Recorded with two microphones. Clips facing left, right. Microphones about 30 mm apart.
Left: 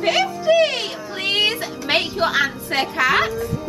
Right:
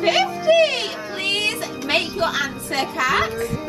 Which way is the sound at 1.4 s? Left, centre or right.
Centre.